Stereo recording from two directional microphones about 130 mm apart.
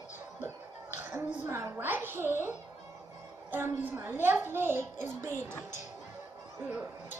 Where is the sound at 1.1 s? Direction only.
20° right (ahead or behind).